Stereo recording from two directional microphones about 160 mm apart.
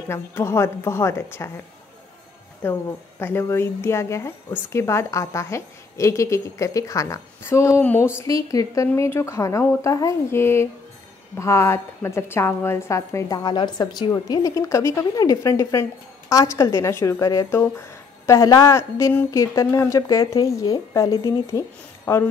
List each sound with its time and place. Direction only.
0.1 s a woman's voice: 15° left (ahead or behind)
2.6 s a woman's voice: 15° left (ahead or behind)